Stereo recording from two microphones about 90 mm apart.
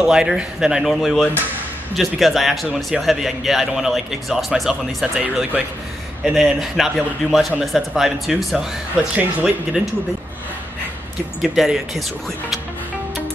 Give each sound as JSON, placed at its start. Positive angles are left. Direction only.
{"t": 0.0, "sound": "a man's voice", "side_deg": -5}
{"t": 5.2, "sound": "speech", "side_deg": -20}
{"t": 6.2, "sound": "a man's voice", "side_deg": -5}
{"t": 9.1, "sound": "speech", "side_deg": -15}
{"t": 11.4, "sound": "a man's voice", "side_deg": -5}